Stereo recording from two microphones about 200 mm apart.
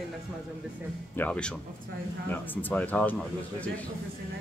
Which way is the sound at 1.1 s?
5° left (ahead or behind).